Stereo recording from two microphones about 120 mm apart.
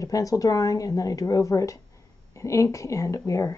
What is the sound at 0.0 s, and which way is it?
Speech, 30° left (ahead or behind).